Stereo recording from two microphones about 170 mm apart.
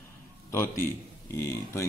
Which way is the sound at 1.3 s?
15° left (ahead or behind).